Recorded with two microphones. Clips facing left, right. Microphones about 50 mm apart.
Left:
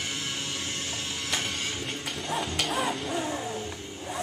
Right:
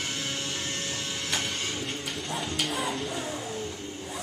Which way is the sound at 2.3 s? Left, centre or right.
Centre.